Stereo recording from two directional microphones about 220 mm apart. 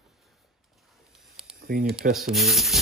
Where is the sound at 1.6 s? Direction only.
45° right (ahead or behind).